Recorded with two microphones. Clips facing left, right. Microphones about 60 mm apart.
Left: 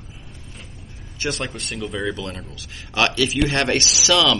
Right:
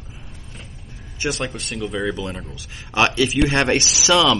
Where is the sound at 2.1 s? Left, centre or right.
Centre.